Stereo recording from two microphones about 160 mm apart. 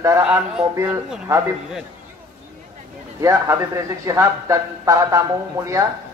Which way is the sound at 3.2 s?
20° right (ahead or behind).